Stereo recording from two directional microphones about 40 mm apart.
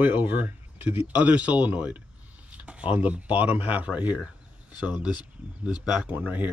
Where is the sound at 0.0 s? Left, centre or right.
Right.